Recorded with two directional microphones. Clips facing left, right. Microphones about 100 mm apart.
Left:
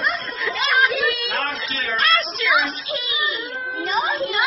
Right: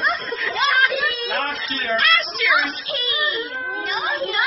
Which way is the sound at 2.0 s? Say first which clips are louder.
Left 2 dB; 30° left (ahead or behind).